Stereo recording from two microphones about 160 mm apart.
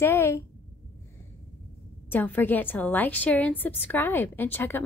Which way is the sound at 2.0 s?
10° left (ahead or behind).